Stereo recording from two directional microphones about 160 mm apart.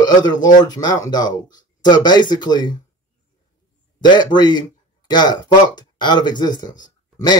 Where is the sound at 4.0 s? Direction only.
30° left (ahead or behind).